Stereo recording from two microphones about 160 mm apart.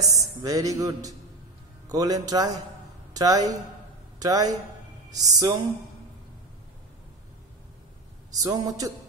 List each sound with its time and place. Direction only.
0.0 s a man's voice: 20° right (ahead or behind)
8.4 s a man's voice: 20° right (ahead or behind)